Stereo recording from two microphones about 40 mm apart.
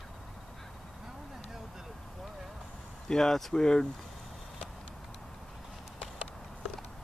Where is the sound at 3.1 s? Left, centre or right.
Centre.